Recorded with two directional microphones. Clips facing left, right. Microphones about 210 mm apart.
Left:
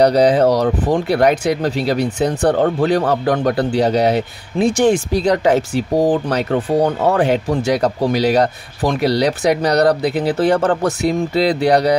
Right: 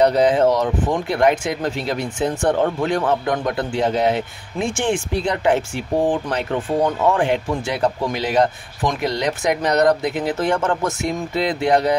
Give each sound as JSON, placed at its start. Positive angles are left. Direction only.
{"t": 0.0, "sound": "speech", "side_deg": 35}